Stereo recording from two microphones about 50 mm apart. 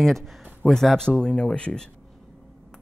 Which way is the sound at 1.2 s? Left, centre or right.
Centre.